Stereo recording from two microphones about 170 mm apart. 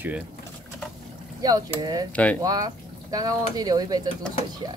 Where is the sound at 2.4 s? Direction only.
20° right (ahead or behind).